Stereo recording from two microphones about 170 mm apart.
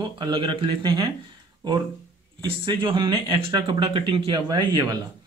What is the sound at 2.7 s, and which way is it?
Speech, 30° right (ahead or behind).